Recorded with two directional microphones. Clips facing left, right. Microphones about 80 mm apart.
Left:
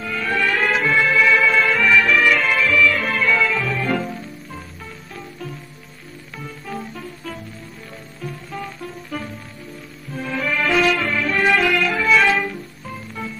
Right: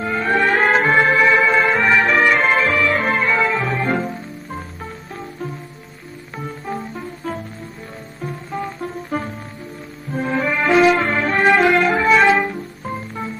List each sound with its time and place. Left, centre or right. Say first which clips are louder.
0.0 s music: right 4 dB; right
6.3 s music: right 4 dB; right